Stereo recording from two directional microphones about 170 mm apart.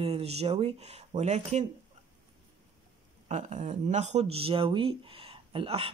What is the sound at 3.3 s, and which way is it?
Speech, 45° right (ahead or behind).